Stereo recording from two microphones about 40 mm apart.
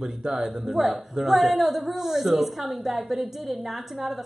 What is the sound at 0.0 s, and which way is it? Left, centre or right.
A woman's voice, centre.